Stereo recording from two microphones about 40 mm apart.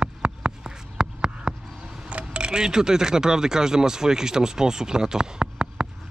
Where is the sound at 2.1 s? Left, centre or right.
Right.